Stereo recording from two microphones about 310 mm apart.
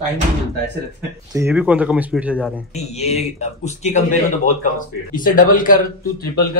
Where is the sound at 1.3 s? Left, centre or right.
Centre.